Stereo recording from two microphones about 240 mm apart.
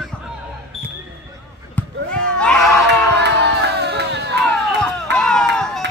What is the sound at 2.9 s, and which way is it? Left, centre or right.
Crowd, right.